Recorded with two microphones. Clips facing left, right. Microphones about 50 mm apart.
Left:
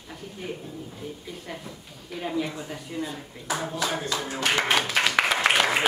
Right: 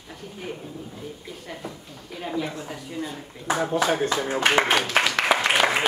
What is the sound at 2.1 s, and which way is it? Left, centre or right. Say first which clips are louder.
Speech: even; centre.